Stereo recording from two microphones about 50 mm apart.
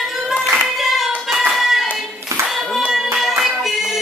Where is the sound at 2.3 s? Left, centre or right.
Right.